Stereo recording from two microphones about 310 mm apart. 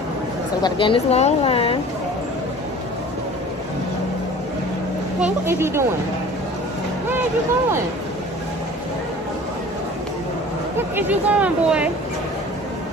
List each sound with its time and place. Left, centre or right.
0.6 s speech: centre
5.2 s speech: centre
11.0 s speech: centre